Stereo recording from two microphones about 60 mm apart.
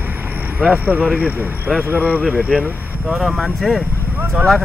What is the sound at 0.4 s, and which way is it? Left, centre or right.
Speech, right.